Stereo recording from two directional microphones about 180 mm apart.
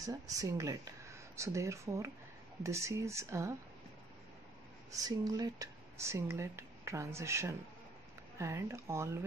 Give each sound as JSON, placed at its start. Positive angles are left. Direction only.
{"t": 0.0, "sound": "speech", "side_deg": -20}
{"t": 4.9, "sound": "speech", "side_deg": -20}